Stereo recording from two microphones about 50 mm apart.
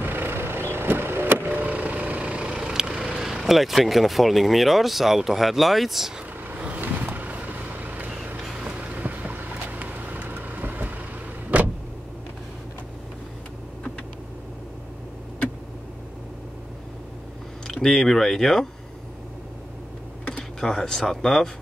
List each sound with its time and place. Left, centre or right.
0.0 s vehicle: right
2.6 s speech: centre
6.8 s vehicle: right
17.6 s speech: centre
20.6 s speech: centre